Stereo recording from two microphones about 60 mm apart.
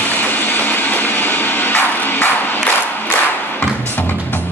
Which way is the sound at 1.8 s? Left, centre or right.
Left.